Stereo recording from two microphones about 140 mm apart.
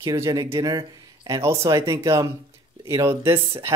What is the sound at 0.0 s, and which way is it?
Speech, 25° right (ahead or behind).